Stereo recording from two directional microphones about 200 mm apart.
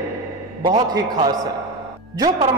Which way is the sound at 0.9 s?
20° right (ahead or behind).